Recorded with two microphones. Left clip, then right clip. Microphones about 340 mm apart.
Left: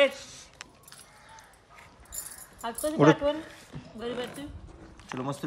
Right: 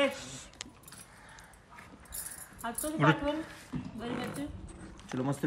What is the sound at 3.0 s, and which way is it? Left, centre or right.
Speech, centre.